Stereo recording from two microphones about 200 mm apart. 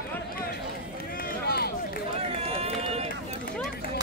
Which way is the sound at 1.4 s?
50° left (ahead or behind).